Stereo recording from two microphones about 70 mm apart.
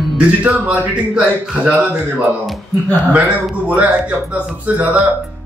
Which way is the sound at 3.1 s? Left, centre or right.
Centre.